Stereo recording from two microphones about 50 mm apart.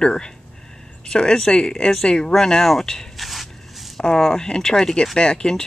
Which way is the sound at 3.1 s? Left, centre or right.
Centre.